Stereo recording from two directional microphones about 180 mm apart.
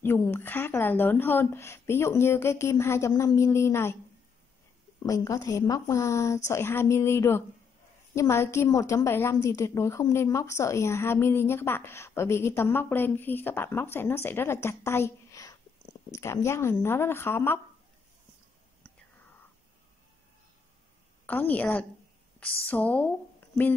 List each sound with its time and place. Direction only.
0.0 s a woman's voice: 15° left (ahead or behind)
5.0 s a woman's voice: 20° left (ahead or behind)
21.3 s a woman's voice: 10° left (ahead or behind)